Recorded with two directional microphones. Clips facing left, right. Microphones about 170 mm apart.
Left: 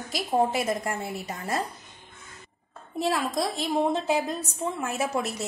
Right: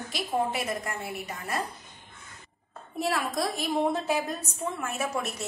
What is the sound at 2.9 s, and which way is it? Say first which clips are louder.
A woman's voice: left 2 dB; 25° left (ahead or behind).